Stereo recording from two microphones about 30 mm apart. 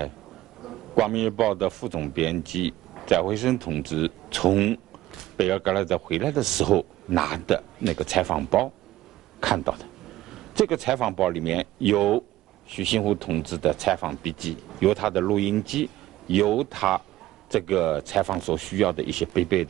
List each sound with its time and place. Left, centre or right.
0.6 s speech: centre